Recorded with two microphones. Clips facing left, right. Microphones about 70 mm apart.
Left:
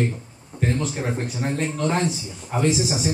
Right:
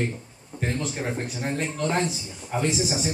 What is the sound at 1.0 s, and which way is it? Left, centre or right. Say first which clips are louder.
Speech: left 3 dB; centre.